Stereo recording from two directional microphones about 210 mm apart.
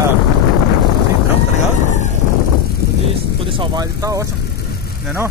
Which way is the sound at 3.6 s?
15° right (ahead or behind).